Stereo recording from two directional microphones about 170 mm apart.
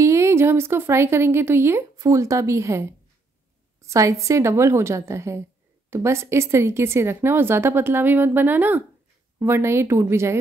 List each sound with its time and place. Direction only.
0.0 s a woman's voice: 15° right (ahead or behind)